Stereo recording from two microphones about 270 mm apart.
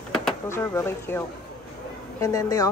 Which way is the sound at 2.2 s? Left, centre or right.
Centre.